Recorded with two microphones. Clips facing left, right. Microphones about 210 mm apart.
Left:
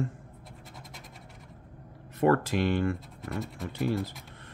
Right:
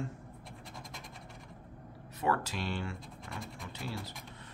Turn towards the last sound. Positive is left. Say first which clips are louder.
# left 11 dB
turn(degrees=50)  # may be behind; listen again after turning